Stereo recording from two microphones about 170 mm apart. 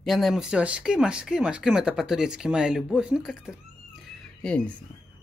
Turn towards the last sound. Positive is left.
turn(degrees=5)  # may be behind; listen again after turning